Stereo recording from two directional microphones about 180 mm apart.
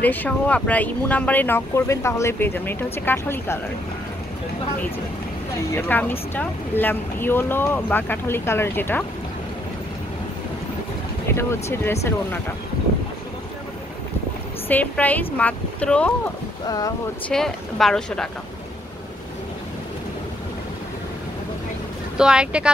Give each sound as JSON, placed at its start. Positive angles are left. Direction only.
{"t": 0.0, "sound": "speech", "side_deg": 10}
{"t": 5.7, "sound": "speech", "side_deg": 10}
{"t": 11.3, "sound": "speech", "side_deg": 15}
{"t": 14.7, "sound": "speech", "side_deg": 10}
{"t": 16.6, "sound": "speech", "side_deg": 20}
{"t": 17.3, "sound": "speech", "side_deg": 0}
{"t": 22.1, "sound": "speech", "side_deg": -5}